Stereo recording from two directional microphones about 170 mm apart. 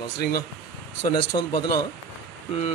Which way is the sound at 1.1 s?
25° left (ahead or behind).